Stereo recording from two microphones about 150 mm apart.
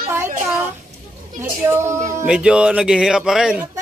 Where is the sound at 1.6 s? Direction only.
15° right (ahead or behind).